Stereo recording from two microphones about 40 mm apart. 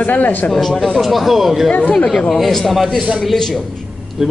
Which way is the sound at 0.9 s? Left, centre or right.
Centre.